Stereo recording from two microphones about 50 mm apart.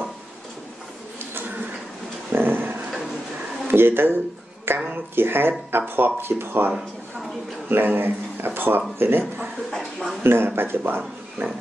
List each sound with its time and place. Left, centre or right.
2.3 s a sound: right
3.6 s speech: right
7.7 s speech: right
10.2 s speech: right